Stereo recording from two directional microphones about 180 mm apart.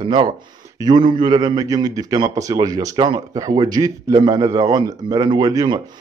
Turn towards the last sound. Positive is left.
turn(degrees=-20)  # may be behind; listen again after turning